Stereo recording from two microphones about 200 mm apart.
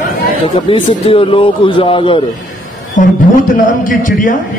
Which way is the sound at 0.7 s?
25° left (ahead or behind).